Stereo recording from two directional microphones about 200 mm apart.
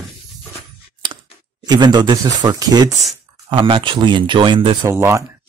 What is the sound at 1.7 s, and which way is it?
Speech, 20° right (ahead or behind).